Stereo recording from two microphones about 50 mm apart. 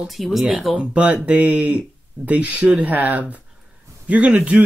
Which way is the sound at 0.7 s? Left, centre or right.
Right.